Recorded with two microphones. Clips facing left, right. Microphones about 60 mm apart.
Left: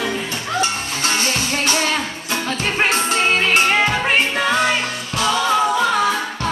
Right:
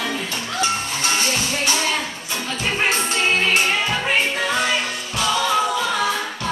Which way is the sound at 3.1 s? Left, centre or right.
Left.